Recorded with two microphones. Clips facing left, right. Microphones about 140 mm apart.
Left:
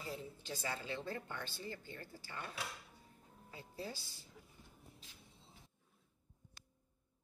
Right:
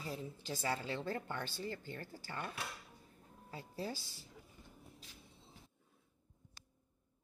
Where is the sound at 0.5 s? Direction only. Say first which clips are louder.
Right 4 dB; 35° right (ahead or behind).